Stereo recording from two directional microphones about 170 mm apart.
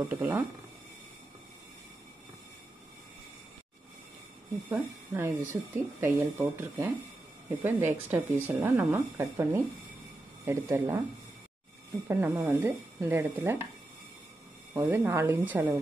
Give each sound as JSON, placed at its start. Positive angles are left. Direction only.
{"t": 0.1, "sound": "speech", "side_deg": -10}
{"t": 4.6, "sound": "speech", "side_deg": -15}
{"t": 12.1, "sound": "speech", "side_deg": -10}
{"t": 14.7, "sound": "speech", "side_deg": -15}